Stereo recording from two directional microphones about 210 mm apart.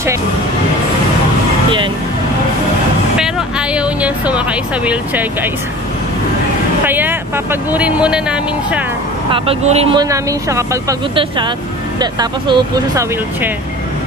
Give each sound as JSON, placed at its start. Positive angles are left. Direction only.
{"t": 3.2, "sound": "music", "side_deg": -5}
{"t": 6.8, "sound": "speech", "side_deg": -10}
{"t": 9.3, "sound": "speech", "side_deg": -30}
{"t": 10.0, "sound": "speech", "side_deg": -15}